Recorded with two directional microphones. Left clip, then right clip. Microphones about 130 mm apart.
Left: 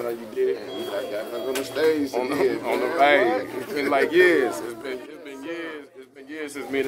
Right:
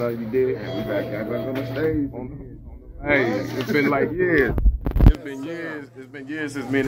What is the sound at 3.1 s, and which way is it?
Speech, 25° left (ahead or behind).